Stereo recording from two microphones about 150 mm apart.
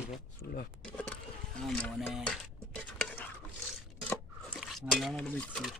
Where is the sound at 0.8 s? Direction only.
10° left (ahead or behind).